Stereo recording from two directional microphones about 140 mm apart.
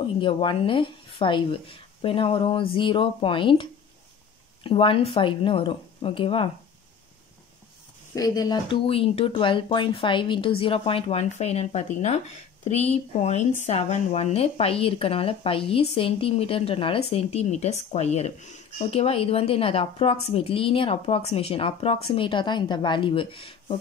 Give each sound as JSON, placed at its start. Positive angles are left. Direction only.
{"t": 0.0, "sound": "speech", "side_deg": 35}
{"t": 4.6, "sound": "speech", "side_deg": 40}
{"t": 8.1, "sound": "speech", "side_deg": 25}
{"t": 8.8, "sound": "speech", "side_deg": 40}